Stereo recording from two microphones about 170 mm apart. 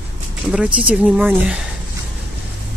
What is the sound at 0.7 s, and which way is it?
Speech, 5° right (ahead or behind).